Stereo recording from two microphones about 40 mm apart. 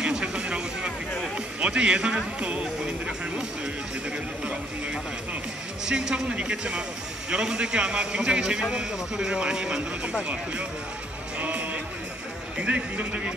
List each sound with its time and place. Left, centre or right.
0.0 s music: right
1.6 s a man's voice: right
5.9 s a man's voice: centre
11.3 s music: right
12.6 s a man's voice: right